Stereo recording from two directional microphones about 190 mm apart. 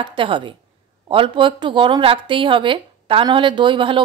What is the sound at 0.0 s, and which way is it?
Speech, 25° right (ahead or behind).